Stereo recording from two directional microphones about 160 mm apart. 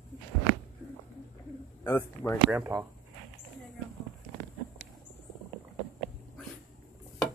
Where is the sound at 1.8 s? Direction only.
15° left (ahead or behind).